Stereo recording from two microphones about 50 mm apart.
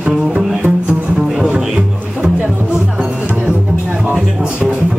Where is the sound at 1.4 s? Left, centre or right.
Centre.